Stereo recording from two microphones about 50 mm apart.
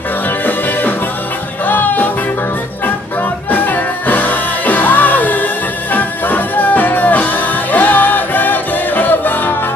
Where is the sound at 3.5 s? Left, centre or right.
Left.